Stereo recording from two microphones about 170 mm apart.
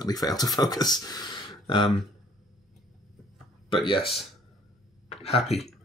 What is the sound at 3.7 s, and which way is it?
Speech, 30° left (ahead or behind).